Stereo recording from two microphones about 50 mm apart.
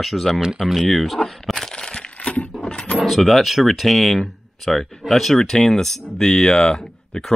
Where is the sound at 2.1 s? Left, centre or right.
Left.